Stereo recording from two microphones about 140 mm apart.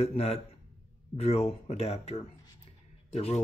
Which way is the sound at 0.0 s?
45° left (ahead or behind).